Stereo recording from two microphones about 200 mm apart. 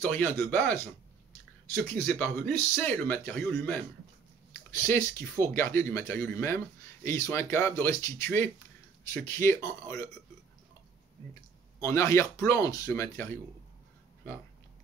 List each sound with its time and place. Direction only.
0.0 s speech: 10° left (ahead or behind)
11.8 s speech: 15° left (ahead or behind)